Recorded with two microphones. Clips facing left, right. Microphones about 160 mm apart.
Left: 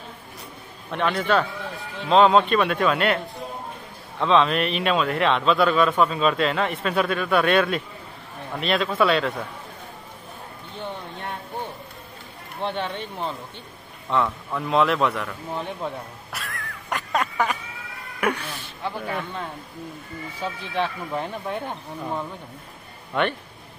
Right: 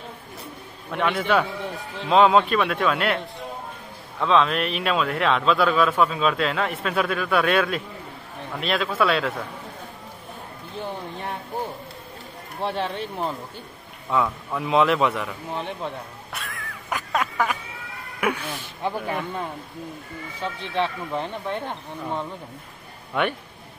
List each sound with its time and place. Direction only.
0.8 s a man's voice: 5° right (ahead or behind)
4.2 s speech: centre (ahead or behind)
12.6 s speech: 5° right (ahead or behind)
16.3 s a sound: centre (ahead or behind)
18.2 s speech: 5° right (ahead or behind)
18.8 s a man's voice: 20° right (ahead or behind)
20.4 s speech: 5° left (ahead or behind)
23.2 s a man's voice: 5° right (ahead or behind)